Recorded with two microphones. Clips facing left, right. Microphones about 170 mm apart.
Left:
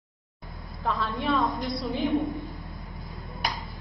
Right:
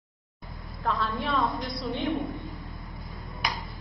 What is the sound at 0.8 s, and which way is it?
A woman's voice, centre (ahead or behind).